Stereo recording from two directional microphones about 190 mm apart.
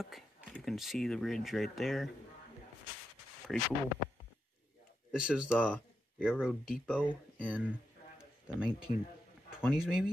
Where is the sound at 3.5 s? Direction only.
Centre (ahead or behind).